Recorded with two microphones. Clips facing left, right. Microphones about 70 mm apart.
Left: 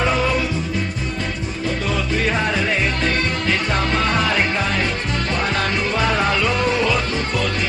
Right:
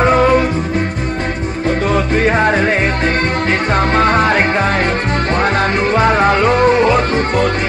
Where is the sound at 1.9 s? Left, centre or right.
Right.